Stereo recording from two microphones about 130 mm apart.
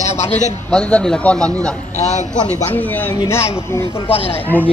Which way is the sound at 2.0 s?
60° left (ahead or behind).